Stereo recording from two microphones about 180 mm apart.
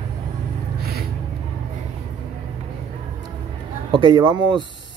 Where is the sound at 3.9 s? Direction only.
25° right (ahead or behind).